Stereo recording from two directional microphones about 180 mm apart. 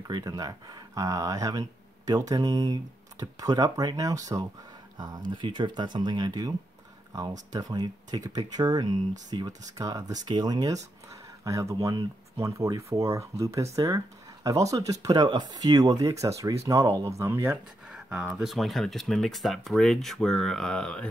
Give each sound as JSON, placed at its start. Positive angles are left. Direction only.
{"t": 0.1, "sound": "speech", "side_deg": -20}
{"t": 7.5, "sound": "speech", "side_deg": -20}